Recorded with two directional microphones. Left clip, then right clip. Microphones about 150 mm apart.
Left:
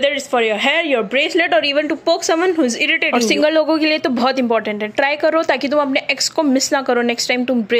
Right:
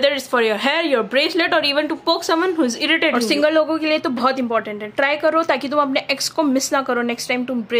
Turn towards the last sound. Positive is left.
turn(degrees=25)  # may be behind; listen again after turning